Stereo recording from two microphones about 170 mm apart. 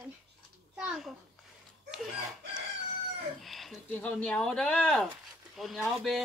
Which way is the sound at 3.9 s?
10° left (ahead or behind).